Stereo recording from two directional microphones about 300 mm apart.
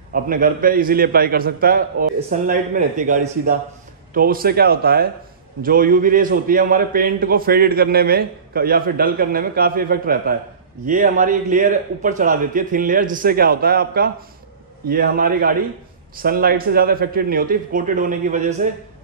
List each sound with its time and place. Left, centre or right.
0.1 s a man's voice: right